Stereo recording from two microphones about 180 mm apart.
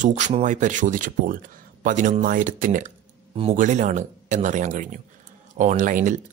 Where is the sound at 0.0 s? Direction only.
40° right (ahead or behind).